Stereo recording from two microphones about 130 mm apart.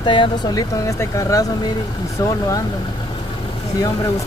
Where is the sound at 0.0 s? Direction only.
40° left (ahead or behind).